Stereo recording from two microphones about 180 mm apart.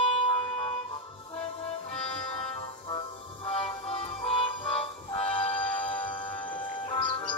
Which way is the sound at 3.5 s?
35° left (ahead or behind).